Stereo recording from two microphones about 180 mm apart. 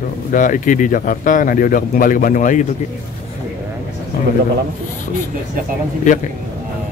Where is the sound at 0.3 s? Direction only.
45° left (ahead or behind).